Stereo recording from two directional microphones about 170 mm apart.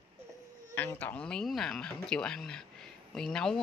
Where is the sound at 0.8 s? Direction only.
10° left (ahead or behind).